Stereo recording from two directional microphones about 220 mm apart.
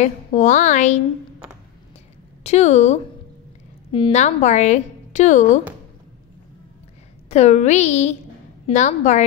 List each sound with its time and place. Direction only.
0.0 s a woman's voice: 35° left (ahead or behind)
2.4 s a woman's voice: 30° left (ahead or behind)
7.2 s a woman's voice: 30° left (ahead or behind)